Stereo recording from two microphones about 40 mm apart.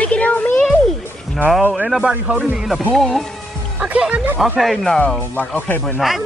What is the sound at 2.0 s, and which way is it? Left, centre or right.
Speech, right.